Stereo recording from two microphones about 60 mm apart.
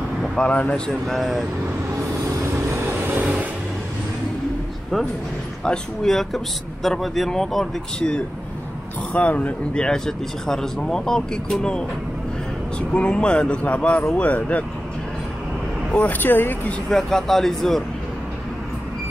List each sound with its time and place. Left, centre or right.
0.4 s speech: left
1.0 s speech: centre
2.8 s vehicle: right
5.6 s speech: centre
9.1 s speech: left
9.8 s speech: centre
12.9 s speech: centre
16.1 s speech: left
16.9 s speech: centre